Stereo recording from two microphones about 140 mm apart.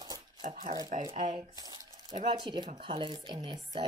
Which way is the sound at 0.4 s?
65° right (ahead or behind).